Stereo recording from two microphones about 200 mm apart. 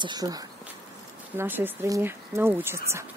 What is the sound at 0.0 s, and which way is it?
Speech, 20° right (ahead or behind).